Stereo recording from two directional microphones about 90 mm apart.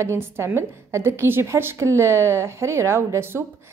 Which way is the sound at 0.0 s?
30° right (ahead or behind).